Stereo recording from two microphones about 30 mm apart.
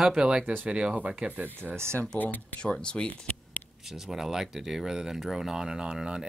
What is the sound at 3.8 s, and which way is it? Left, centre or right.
Speech, centre.